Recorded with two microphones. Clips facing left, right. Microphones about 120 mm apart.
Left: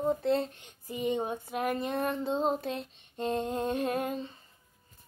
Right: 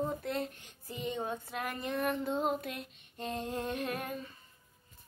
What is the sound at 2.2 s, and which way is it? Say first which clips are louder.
A woman's voice: left 4 dB; 25° left (ahead or behind).